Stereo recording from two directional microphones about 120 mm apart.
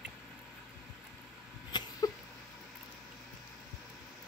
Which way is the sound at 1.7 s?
40° left (ahead or behind).